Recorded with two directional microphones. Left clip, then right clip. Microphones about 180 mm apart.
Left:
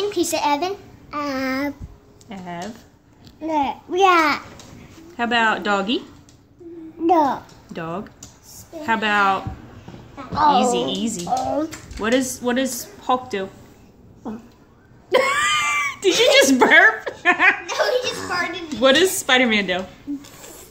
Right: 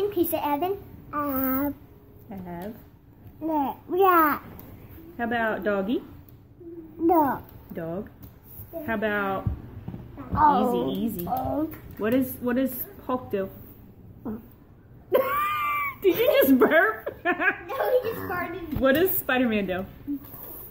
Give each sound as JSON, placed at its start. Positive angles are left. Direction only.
{"t": 0.1, "sound": "a child's voice", "side_deg": 5}
{"t": 2.2, "sound": "speech", "side_deg": 45}
{"t": 3.4, "sound": "a sound", "side_deg": 5}
{"t": 5.1, "sound": "a woman's voice", "side_deg": 40}
{"t": 7.1, "sound": "a sound", "side_deg": 10}
{"t": 7.7, "sound": "a woman's voice", "side_deg": 40}
{"t": 10.5, "sound": "a woman's voice", "side_deg": 30}
{"t": 12.0, "sound": "a woman's voice", "side_deg": 35}
{"t": 15.0, "sound": "a sound", "side_deg": 35}
{"t": 18.3, "sound": "a woman's voice", "side_deg": 35}